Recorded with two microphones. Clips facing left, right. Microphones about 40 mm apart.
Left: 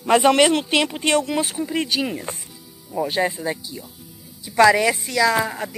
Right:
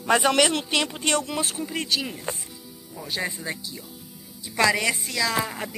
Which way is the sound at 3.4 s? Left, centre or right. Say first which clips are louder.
Left 6 dB; centre.